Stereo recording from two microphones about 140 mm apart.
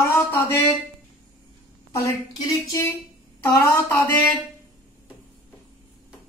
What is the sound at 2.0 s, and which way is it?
A woman's voice, 25° left (ahead or behind).